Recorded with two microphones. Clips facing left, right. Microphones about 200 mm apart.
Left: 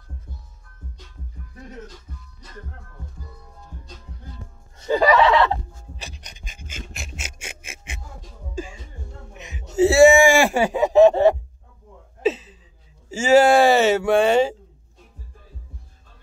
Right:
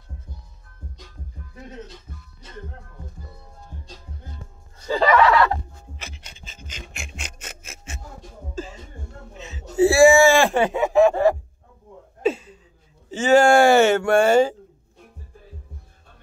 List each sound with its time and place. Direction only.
1.7 s speech: 20° right (ahead or behind)
3.8 s music: 30° right (ahead or behind)
4.7 s a sound: 20° left (ahead or behind)
9.3 s speech: 15° left (ahead or behind)
11.1 s music: 25° left (ahead or behind)
12.2 s a sound: centre (ahead or behind)
13.2 s speech: 5° left (ahead or behind)